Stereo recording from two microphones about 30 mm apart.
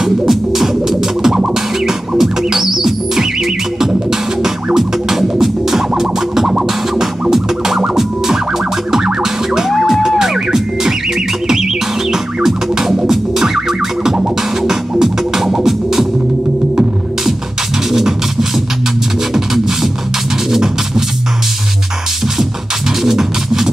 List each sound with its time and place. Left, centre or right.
0.0 s music: centre
4.7 s music: centre
8.9 s music: centre
12.8 s music: centre
19.3 s music: centre
23.0 s music: centre